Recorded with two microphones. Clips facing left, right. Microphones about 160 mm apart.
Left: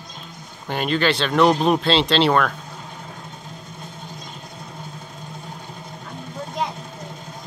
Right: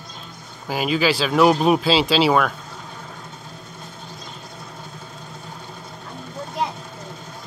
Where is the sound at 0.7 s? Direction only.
5° right (ahead or behind).